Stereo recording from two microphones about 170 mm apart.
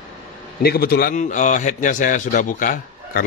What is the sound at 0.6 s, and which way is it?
Speech, 65° left (ahead or behind).